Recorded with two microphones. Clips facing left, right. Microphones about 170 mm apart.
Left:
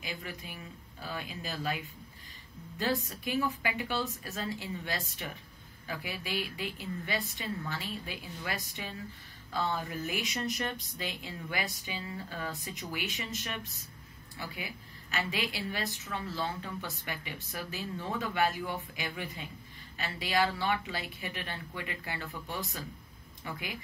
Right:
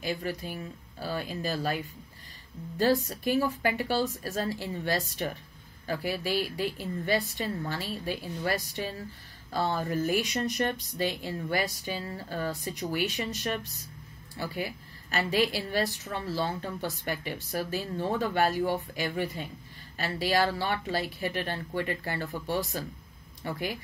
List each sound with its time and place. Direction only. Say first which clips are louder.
0.0 s a woman's voice: right 9 dB; 40° right (ahead or behind)
2.8 s a woman's voice: right 7 dB; 40° right (ahead or behind)